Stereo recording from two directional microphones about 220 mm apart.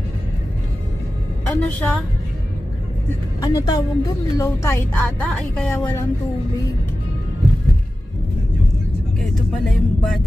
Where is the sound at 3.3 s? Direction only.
20° left (ahead or behind).